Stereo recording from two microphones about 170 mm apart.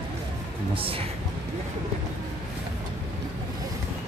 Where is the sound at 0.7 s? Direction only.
35° right (ahead or behind).